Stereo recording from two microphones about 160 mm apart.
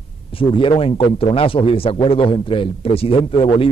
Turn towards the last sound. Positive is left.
turn(degrees=35)  # may be behind; listen again after turning